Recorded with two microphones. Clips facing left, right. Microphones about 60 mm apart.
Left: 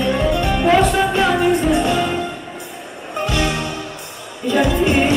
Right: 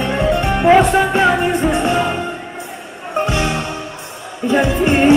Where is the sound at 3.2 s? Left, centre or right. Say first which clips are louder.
Left 1 dB; right.